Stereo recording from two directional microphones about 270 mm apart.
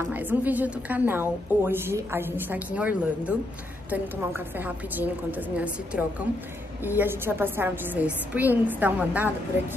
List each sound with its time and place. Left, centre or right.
0.0 s a woman's voice: centre